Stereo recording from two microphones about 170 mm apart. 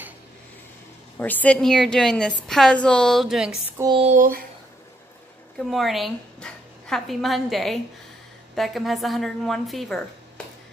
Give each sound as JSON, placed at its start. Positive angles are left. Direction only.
{"t": 1.1, "sound": "speech", "side_deg": 10}
{"t": 3.9, "sound": "a sound", "side_deg": -35}
{"t": 5.6, "sound": "speech", "side_deg": 0}